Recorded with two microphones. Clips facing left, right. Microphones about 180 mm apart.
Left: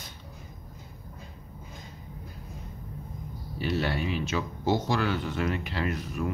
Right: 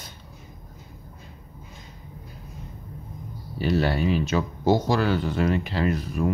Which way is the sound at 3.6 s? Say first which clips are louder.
Right 6 dB; 40° right (ahead or behind).